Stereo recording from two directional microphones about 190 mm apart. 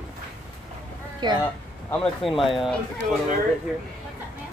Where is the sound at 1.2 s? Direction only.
25° right (ahead or behind).